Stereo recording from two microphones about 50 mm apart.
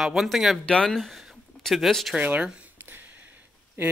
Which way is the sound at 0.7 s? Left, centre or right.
Centre.